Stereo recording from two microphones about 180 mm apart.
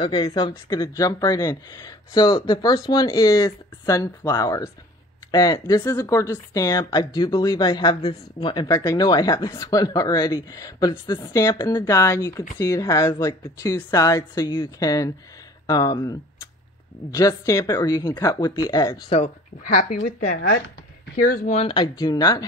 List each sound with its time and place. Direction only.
0.0 s speech: 25° left (ahead or behind)
8.6 s speech: 20° left (ahead or behind)
19.0 s speech: 35° left (ahead or behind)
19.7 s speech: 45° left (ahead or behind)
21.5 s speech: 30° left (ahead or behind)